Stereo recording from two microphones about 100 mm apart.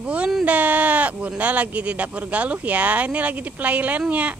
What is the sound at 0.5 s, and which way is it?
Speech, 15° right (ahead or behind).